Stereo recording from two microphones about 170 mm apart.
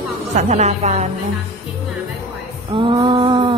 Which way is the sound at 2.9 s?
25° right (ahead or behind).